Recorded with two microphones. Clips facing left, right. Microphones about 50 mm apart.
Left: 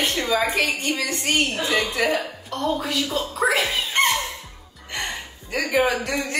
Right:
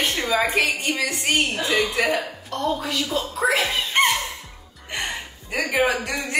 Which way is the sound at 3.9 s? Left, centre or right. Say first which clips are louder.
Right 1 dB; centre.